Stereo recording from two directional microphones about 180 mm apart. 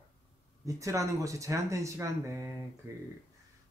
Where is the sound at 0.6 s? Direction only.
15° right (ahead or behind).